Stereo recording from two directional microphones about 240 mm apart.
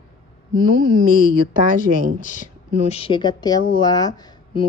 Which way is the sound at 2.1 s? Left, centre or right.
Left.